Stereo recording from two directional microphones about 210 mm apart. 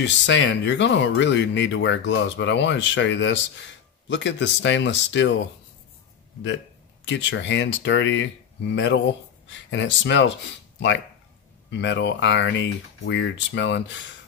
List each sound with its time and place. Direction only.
0.0 s speech: 60° left (ahead or behind)
7.1 s speech: 60° left (ahead or behind)
11.7 s speech: 60° left (ahead or behind)